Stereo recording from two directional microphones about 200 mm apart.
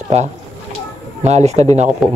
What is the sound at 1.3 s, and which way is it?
Speech, 35° right (ahead or behind).